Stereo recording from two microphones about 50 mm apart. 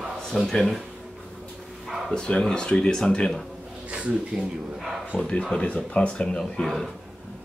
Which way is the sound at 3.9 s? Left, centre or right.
Right.